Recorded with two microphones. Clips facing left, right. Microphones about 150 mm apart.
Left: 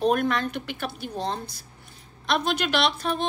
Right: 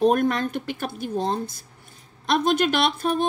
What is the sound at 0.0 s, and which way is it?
Speech, 40° right (ahead or behind).